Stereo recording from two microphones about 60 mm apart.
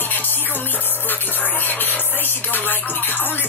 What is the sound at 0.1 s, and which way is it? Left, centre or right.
Music, left.